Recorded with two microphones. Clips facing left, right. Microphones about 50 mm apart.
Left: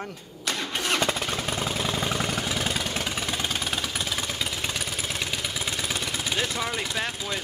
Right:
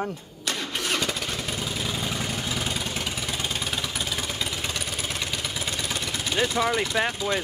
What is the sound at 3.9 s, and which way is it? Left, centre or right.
Engine, centre.